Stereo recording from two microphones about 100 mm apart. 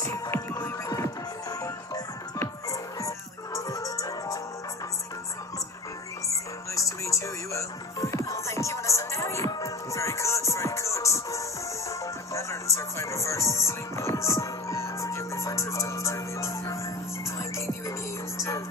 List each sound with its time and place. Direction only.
0.0 s music: 30° left (ahead or behind)
3.5 s music: 30° left (ahead or behind)
6.2 s music: 30° left (ahead or behind)